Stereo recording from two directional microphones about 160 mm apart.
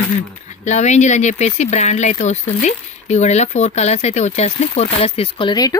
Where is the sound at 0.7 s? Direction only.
45° left (ahead or behind).